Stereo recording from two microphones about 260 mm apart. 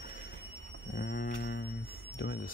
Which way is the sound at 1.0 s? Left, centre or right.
Left.